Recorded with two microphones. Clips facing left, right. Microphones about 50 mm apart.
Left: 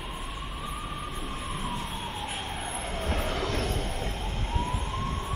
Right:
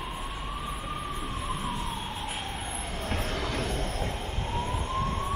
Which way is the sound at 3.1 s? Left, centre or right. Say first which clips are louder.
Left 1 dB; centre.